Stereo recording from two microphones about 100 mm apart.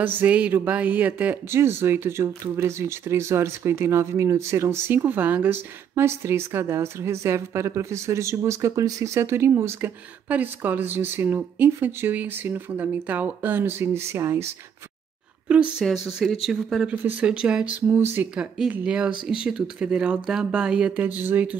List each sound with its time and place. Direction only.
0.0 s speech: 20° right (ahead or behind)
15.4 s speech: 15° right (ahead or behind)
17.0 s speech: 15° right (ahead or behind)
17.9 s speech: 20° right (ahead or behind)
18.3 s speech: 10° right (ahead or behind)